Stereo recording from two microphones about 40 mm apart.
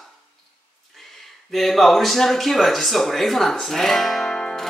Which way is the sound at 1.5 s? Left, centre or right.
Centre.